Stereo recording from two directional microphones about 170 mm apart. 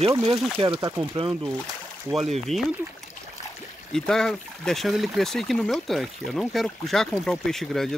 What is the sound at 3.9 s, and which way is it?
Speech, 5° left (ahead or behind).